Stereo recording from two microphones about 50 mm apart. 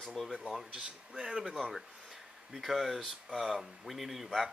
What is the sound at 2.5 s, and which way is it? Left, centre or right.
Speech, centre.